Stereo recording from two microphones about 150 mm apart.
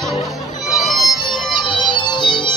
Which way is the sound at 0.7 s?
Centre (ahead or behind).